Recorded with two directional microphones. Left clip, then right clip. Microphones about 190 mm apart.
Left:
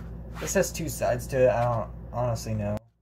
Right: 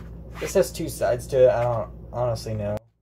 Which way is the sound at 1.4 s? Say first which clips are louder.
Right 2 dB; 10° right (ahead or behind).